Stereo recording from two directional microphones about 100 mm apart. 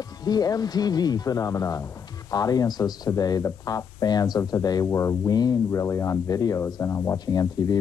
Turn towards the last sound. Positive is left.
turn(degrees=40)  # may be behind; listen again after turning